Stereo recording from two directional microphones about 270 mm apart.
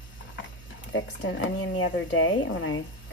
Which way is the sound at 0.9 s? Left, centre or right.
Left.